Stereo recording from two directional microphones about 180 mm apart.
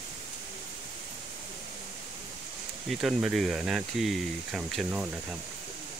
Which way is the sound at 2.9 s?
Centre (ahead or behind).